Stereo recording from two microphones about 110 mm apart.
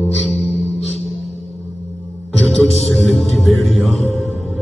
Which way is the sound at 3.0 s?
Centre (ahead or behind).